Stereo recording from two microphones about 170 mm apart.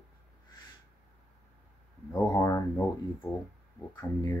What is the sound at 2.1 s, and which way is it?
Speech, 15° left (ahead or behind).